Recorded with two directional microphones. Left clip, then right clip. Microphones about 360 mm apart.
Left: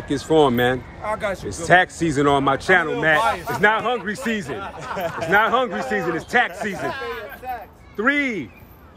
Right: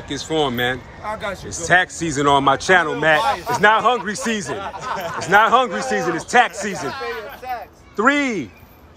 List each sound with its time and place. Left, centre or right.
0.1 s a man's voice: centre
7.5 s a sound: right
7.9 s a man's voice: centre